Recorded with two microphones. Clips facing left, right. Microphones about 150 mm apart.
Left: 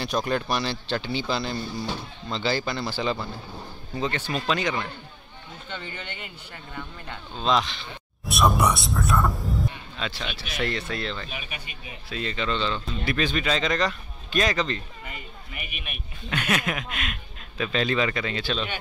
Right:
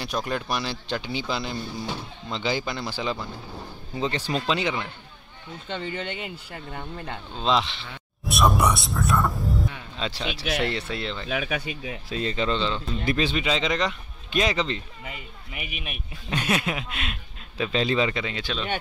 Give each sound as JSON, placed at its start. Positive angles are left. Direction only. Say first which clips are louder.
{"t": 0.0, "sound": "speech", "louder": "left 3 dB", "side_deg": -10}
{"t": 4.0, "sound": "speech", "louder": "right 2 dB", "side_deg": -25}
{"t": 7.3, "sound": "speech", "louder": "even", "side_deg": -20}
{"t": 8.3, "sound": "speech", "louder": "even", "side_deg": 0}
{"t": 9.9, "sound": "speech", "louder": "right 2 dB", "side_deg": -30}
{"t": 10.3, "sound": "speech", "louder": "right 9 dB", "side_deg": -90}
{"t": 10.6, "sound": "speech", "louder": "right 1 dB", "side_deg": -25}
{"t": 11.2, "sound": "speech", "louder": "right 10 dB", "side_deg": -90}
{"t": 12.1, "sound": "speech", "louder": "right 2 dB", "side_deg": -35}
{"t": 18.2, "sound": "speech", "louder": "left 2 dB", "side_deg": -15}